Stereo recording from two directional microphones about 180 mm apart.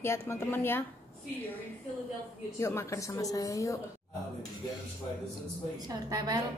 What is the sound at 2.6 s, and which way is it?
A woman's voice, 15° left (ahead or behind).